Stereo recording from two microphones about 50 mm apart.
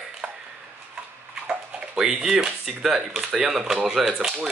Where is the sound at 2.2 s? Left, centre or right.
Centre.